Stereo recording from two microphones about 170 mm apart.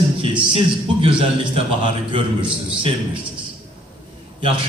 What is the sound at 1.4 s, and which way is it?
Speech, 30° right (ahead or behind).